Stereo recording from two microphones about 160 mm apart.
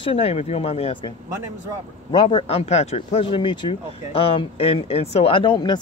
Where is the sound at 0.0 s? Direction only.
35° left (ahead or behind).